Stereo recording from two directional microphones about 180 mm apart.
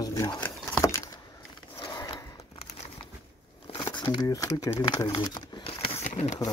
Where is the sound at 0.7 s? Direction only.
20° left (ahead or behind).